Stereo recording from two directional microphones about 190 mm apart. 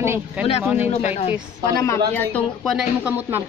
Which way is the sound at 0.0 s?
15° right (ahead or behind).